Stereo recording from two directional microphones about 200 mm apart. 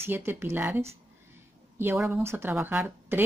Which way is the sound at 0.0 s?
10° right (ahead or behind).